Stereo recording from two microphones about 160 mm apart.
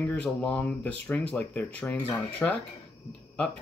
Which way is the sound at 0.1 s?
5° left (ahead or behind).